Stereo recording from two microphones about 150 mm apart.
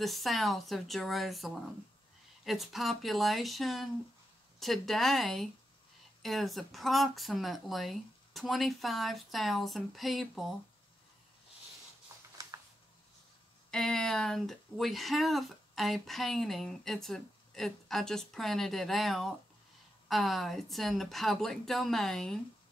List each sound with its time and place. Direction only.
0.0 s speech: centre (ahead or behind)
12.1 s a sound: 20° right (ahead or behind)
13.7 s speech: 5° left (ahead or behind)